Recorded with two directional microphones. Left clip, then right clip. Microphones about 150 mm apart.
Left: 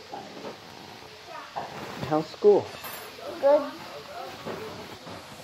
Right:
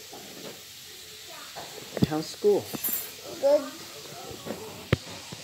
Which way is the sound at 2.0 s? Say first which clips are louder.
Left 4 dB; 30° right (ahead or behind).